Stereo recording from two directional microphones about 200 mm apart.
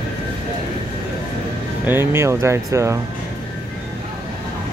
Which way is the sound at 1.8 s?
10° right (ahead or behind).